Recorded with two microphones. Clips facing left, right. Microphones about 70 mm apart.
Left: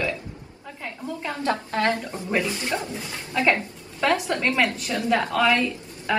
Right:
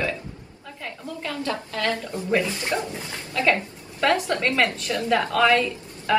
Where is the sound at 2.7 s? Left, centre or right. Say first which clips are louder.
Right 1 dB; right.